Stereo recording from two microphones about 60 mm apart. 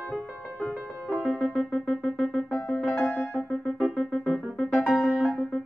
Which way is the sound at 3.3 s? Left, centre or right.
Centre.